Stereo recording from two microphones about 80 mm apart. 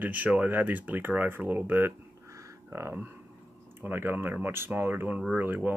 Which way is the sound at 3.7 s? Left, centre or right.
Right.